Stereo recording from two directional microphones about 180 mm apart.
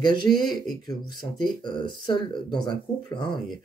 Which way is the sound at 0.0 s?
25° left (ahead or behind).